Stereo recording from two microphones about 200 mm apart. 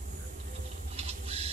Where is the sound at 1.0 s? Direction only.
30° right (ahead or behind).